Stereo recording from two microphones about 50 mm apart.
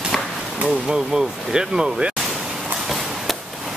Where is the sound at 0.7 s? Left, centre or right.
Centre.